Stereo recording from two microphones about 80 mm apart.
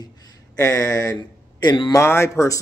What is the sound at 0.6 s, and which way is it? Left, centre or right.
Speech, left.